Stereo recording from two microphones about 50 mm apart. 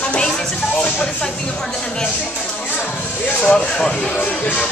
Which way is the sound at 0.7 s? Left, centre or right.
Left.